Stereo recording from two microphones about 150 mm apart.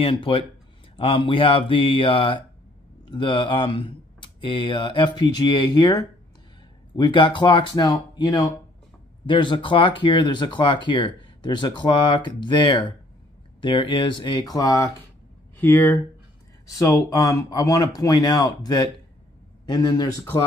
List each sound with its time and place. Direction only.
0.0 s a man's voice: 35° left (ahead or behind)